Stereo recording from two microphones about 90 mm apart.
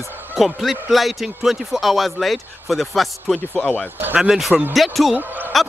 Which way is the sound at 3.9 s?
20° right (ahead or behind).